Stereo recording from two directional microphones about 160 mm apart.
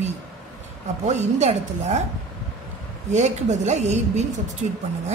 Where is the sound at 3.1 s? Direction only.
45° right (ahead or behind).